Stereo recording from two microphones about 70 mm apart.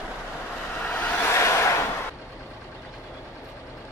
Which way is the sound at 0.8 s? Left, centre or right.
Left.